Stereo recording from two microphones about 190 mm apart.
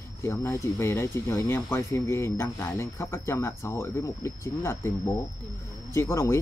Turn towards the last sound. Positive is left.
turn(degrees=15)  # may be behind; listen again after turning